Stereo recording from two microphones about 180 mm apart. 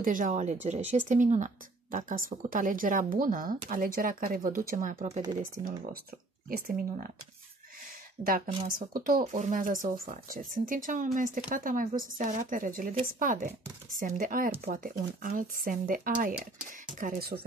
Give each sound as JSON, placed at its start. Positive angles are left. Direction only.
{"t": 0.0, "sound": "speech", "side_deg": -45}
{"t": 4.9, "sound": "speech", "side_deg": -35}
{"t": 5.4, "sound": "speech", "side_deg": -50}
{"t": 8.6, "sound": "speech", "side_deg": -50}